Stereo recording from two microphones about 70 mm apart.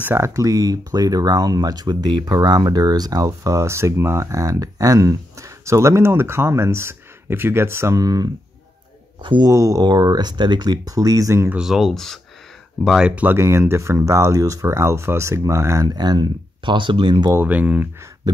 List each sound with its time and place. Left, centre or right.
0.0 s speech: right
8.0 s speech: right
9.5 s speech: right
9.8 s speech: right
11.5 s speech: centre
12.9 s speech: centre
13.4 s speech: right
15.9 s speech: right
17.4 s speech: right